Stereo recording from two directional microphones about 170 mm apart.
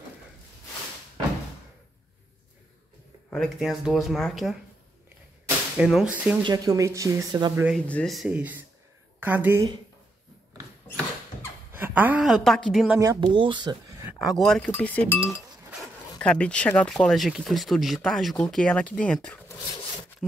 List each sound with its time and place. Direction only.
3.3 s speech: centre (ahead or behind)
5.8 s speech: 5° right (ahead or behind)
6.4 s speech: 20° right (ahead or behind)
7.7 s a woman's voice: 5° left (ahead or behind); by 9.8 s 15° right (ahead or behind)
11.7 s a woman's voice: 10° right (ahead or behind)
13.0 s speech: 20° right (ahead or behind)
14.1 s speech: centre (ahead or behind)